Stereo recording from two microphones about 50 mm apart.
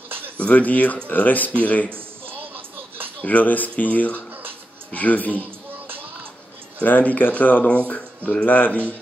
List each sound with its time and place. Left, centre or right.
0.4 s speech: left
1.9 s music: right
3.2 s speech: left
6.8 s speech: left